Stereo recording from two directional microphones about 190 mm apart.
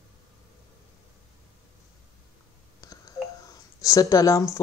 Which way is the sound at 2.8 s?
20° left (ahead or behind).